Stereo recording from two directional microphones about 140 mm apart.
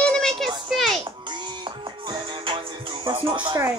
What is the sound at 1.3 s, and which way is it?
Music, 35° right (ahead or behind).